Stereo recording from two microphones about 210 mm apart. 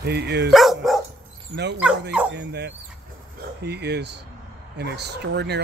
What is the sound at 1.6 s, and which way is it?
Speech, 55° right (ahead or behind).